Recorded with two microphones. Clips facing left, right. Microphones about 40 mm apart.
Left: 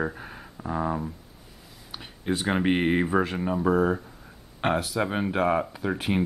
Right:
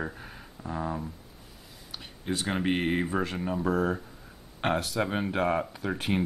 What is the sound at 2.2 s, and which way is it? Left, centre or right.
Speech, centre.